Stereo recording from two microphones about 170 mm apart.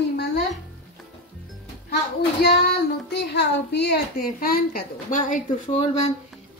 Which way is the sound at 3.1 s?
85° left.